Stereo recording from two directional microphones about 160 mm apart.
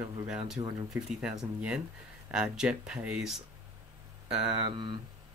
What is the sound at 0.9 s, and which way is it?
Speech, 5° right (ahead or behind).